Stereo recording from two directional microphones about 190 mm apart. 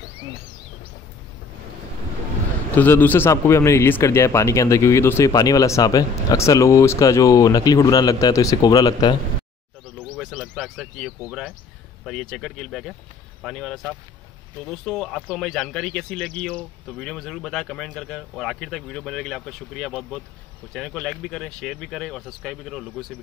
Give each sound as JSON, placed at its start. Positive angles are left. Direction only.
{"t": 2.7, "sound": "a man's voice", "side_deg": 10}
{"t": 10.1, "sound": "bird", "side_deg": 0}
{"t": 11.1, "sound": "speech", "side_deg": -5}